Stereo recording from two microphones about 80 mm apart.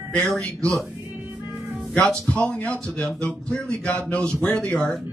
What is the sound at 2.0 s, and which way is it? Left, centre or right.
A man's voice, centre.